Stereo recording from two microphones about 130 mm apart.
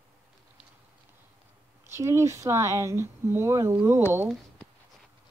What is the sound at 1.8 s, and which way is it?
Speech, 20° right (ahead or behind).